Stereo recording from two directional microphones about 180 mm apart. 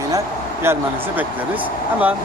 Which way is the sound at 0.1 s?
15° right (ahead or behind).